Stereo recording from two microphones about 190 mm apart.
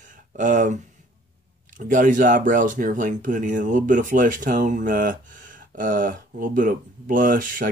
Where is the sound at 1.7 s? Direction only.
45° right (ahead or behind).